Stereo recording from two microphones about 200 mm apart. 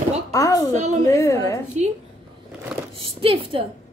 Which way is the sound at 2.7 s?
Centre (ahead or behind).